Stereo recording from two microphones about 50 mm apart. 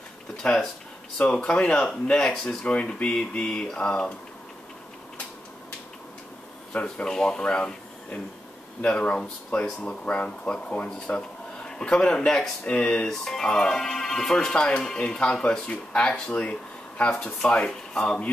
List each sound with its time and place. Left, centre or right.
0.4 s speech: centre
6.7 s speech: left
7.1 s speech: centre